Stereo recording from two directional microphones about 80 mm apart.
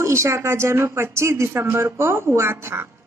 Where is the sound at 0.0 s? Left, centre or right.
Right.